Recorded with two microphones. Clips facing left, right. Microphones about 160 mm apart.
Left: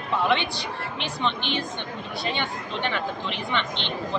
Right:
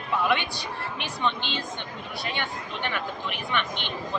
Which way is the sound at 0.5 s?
25° left (ahead or behind).